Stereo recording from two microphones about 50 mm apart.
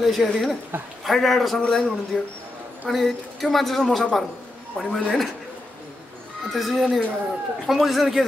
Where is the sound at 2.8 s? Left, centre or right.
Centre.